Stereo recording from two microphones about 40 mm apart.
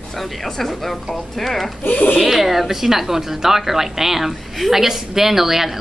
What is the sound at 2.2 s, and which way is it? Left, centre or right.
A woman's voice, centre.